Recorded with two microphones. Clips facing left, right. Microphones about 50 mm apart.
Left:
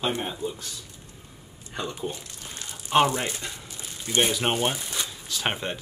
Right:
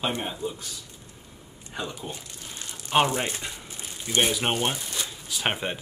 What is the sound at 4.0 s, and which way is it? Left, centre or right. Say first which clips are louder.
Speech: even; centre.